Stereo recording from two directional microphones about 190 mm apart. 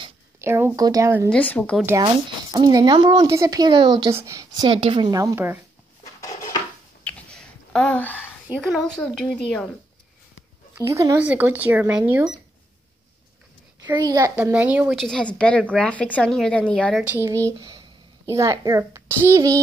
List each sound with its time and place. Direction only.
0.4 s speech: 10° right (ahead or behind)
1.3 s a woman's voice: 5° left (ahead or behind)
1.9 s speech: 20° right (ahead or behind)
7.1 s a sound: 5° left (ahead or behind)
8.6 s a woman's voice: centre (ahead or behind)
10.7 s speech: 15° right (ahead or behind)
13.8 s speech: 20° right (ahead or behind)
14.3 s speech: 5° right (ahead or behind)
15.0 s a woman's voice: 5° left (ahead or behind)
17.0 s speech: 10° right (ahead or behind)